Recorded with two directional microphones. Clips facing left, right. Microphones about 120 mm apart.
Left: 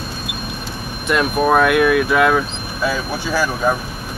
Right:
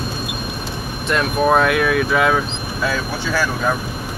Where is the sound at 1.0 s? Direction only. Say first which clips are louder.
Left 1 dB; 5° left (ahead or behind).